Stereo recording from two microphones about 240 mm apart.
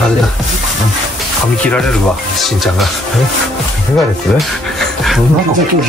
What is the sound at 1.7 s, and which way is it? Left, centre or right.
Speech, centre.